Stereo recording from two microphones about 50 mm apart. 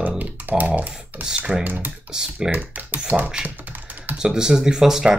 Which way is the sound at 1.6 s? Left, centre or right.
Right.